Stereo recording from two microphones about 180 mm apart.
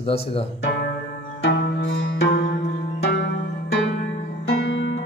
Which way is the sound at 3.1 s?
70° left (ahead or behind).